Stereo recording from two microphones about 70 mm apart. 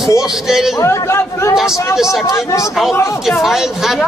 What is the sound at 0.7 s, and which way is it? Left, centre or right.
Speech, left.